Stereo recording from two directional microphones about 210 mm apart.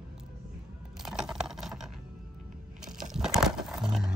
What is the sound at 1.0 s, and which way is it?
Computer keyboard, 5° right (ahead or behind).